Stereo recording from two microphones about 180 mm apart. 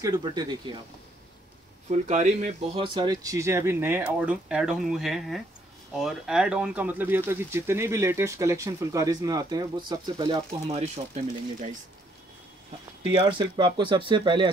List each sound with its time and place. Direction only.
0.0 s speech: 25° right (ahead or behind)
1.9 s speech: 40° right (ahead or behind); by 10.8 s 25° right (ahead or behind)
10.8 s speech: 40° right (ahead or behind)
13.1 s speech: 25° right (ahead or behind)